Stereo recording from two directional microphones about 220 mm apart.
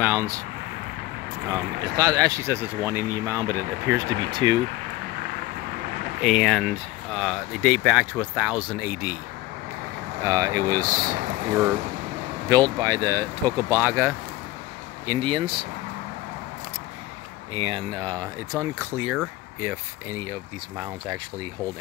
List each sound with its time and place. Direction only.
0.0 s speech: 10° right (ahead or behind)
1.5 s speech: 15° right (ahead or behind)
6.2 s speech: centre (ahead or behind)
10.2 s speech: 15° right (ahead or behind)
12.4 s speech: 15° right (ahead or behind)
15.0 s speech: 20° right (ahead or behind)
17.6 s speech: 25° right (ahead or behind); by 20.2 s 10° right (ahead or behind)